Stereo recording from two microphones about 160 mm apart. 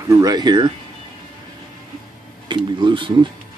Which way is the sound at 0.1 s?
25° right (ahead or behind).